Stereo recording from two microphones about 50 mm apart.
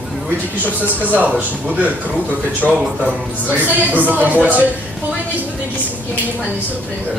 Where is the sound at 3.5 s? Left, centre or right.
Right.